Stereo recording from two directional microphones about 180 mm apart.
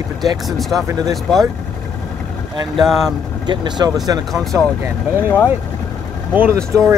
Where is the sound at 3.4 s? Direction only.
25° right (ahead or behind).